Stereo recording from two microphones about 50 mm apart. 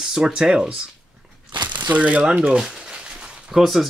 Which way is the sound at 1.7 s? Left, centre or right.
Right.